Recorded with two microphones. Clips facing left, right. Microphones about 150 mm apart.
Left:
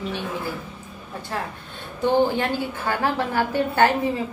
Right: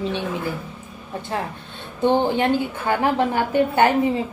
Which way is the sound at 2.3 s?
20° right (ahead or behind).